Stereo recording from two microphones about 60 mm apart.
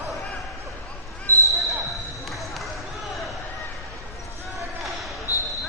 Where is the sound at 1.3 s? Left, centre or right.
Right.